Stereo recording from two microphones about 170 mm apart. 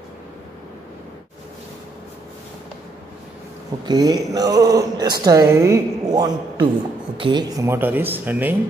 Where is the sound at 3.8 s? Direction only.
25° right (ahead or behind).